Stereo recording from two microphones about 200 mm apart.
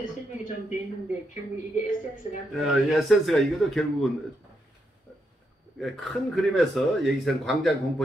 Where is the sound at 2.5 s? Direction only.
Centre (ahead or behind).